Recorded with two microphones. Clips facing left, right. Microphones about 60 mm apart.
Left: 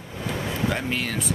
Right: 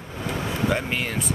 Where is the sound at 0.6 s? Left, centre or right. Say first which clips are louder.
Right 2 dB; centre.